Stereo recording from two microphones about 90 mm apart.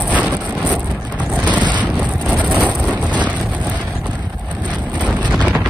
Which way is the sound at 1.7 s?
15° right (ahead or behind).